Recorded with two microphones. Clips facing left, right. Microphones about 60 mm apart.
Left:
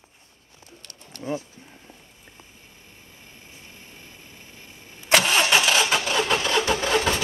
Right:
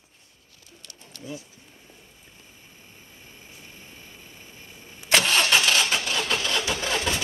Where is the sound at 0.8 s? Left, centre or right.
Left.